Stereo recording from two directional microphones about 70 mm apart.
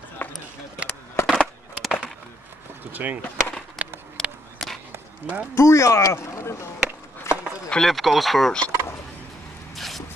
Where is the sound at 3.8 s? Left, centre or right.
Right.